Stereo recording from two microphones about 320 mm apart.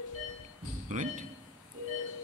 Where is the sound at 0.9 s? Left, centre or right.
Right.